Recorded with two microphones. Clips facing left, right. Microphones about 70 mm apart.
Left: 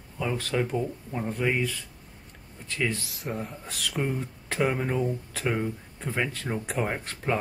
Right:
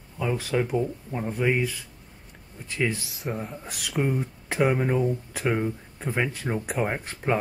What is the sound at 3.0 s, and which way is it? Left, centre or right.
Speech, centre.